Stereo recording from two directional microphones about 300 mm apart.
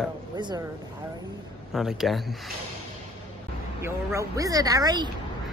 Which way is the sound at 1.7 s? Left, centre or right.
Centre.